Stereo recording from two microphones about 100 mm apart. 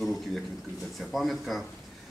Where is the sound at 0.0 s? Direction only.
Centre (ahead or behind).